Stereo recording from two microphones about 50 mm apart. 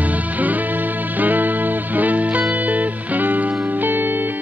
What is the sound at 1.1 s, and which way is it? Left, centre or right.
Music, right.